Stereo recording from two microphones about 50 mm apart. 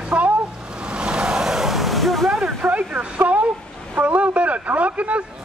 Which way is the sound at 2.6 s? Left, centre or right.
Right.